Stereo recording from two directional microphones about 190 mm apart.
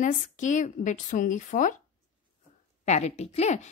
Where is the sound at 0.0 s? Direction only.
40° left (ahead or behind).